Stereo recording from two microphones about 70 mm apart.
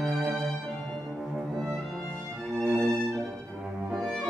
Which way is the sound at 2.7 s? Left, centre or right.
Centre.